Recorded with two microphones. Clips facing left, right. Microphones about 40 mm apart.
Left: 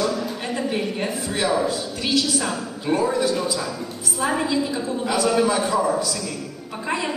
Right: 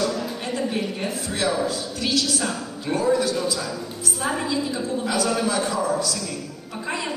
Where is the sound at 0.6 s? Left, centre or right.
Centre.